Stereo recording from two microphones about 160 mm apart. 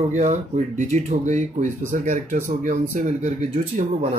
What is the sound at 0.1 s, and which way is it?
Speech, 50° right (ahead or behind).